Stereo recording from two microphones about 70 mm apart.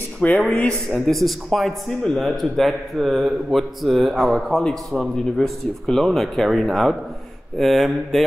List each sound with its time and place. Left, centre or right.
0.2 s speech: left
0.8 s a man's voice: centre